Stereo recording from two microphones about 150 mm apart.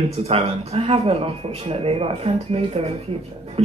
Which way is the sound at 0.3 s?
40° right (ahead or behind).